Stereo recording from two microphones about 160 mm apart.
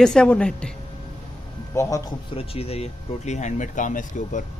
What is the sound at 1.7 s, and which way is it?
Speech, 20° left (ahead or behind).